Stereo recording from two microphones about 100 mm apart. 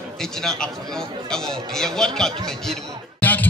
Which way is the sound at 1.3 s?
5° left (ahead or behind).